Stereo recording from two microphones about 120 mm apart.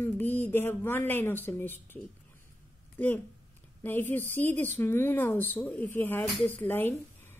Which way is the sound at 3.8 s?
15° left (ahead or behind).